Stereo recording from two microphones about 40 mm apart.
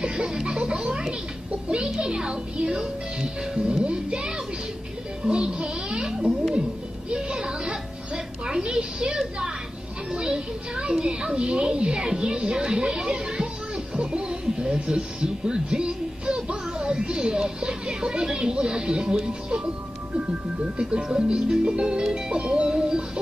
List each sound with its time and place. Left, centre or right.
0.0 s speech: right
20.2 s speech: right